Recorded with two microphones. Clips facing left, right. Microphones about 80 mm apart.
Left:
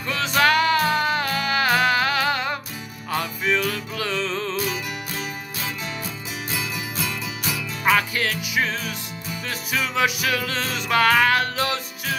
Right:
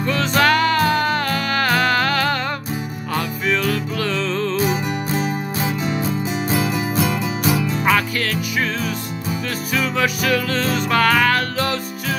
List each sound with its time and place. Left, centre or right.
0.1 s music: centre
4.6 s music: right
8.2 s music: centre
9.8 s music: centre